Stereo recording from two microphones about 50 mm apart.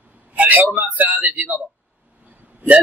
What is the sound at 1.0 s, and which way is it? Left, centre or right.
Speech, right.